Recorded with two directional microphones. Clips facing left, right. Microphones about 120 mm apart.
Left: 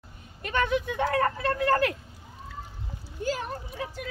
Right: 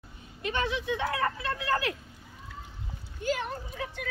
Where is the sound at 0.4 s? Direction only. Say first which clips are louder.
Left 4 dB; 50° left (ahead or behind).